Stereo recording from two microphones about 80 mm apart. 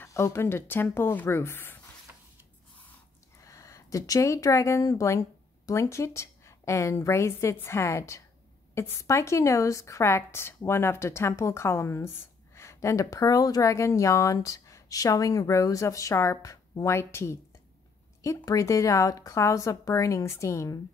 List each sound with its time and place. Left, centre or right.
0.0 s a woman's voice: left
3.4 s a woman's voice: left